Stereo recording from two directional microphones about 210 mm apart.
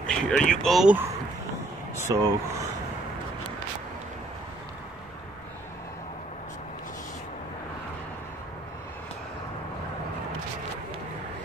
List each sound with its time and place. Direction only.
0.0 s speech: 5° left (ahead or behind)
2.1 s speech: 15° right (ahead or behind)